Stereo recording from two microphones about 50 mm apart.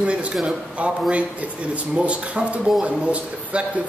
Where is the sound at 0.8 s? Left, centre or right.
Right.